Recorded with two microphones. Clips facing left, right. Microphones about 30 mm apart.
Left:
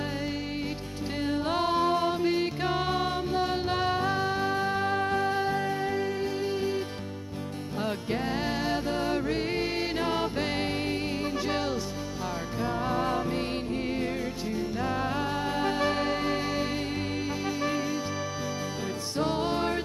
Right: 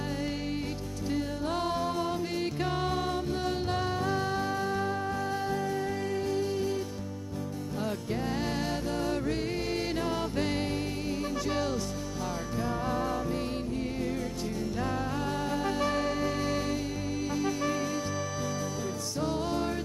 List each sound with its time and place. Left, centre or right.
1.4 s music: left
4.9 s music: left
5.2 s music: left
7.8 s music: left
13.0 s music: left
14.6 s music: left
15.0 s music: left
19.1 s music: left